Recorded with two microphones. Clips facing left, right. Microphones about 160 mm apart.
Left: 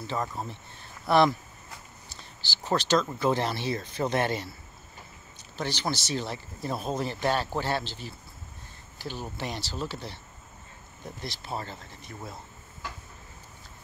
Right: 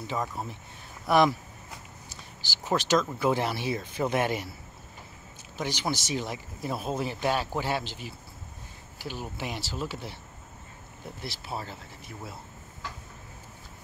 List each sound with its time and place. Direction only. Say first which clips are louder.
0.0 s speech: even; 10° right (ahead or behind)
2.4 s speech: even; 10° right (ahead or behind)
5.6 s speech: even; 10° right (ahead or behind)
11.1 s speech: left 1 dB; 5° right (ahead or behind)